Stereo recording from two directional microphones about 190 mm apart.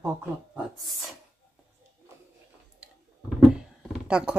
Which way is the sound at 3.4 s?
5° right (ahead or behind).